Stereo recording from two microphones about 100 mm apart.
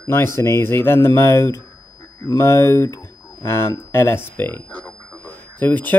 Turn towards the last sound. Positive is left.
turn(degrees=20)  # may be behind; listen again after turning